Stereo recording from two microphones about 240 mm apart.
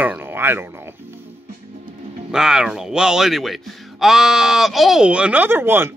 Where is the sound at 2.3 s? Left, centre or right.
Centre.